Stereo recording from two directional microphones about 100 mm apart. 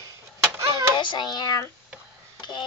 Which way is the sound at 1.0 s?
50° left (ahead or behind).